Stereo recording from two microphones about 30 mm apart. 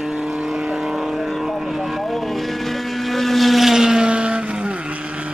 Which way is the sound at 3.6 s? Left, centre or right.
Centre.